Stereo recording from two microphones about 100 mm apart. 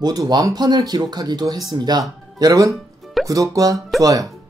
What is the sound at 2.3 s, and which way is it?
Speech, 35° right (ahead or behind).